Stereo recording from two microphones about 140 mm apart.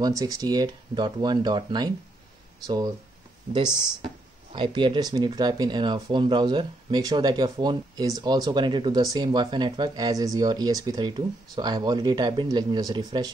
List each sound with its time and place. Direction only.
0.2 s speech: 25° right (ahead or behind)
4.5 s speech: 35° right (ahead or behind)